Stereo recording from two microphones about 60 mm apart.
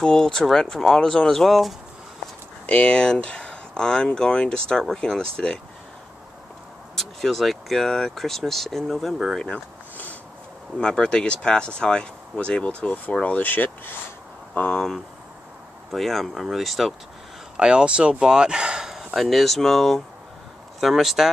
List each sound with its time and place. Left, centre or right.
0.0 s speech: centre
2.6 s speech: left
7.0 s speech: centre
10.8 s speech: centre
14.7 s speech: centre
17.6 s speech: centre